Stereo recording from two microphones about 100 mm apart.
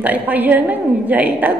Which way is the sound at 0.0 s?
15° right (ahead or behind).